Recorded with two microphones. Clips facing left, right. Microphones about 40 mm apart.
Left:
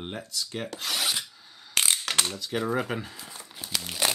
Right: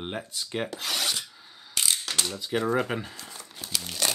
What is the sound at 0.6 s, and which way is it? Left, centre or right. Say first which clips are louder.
Filing: even; centre.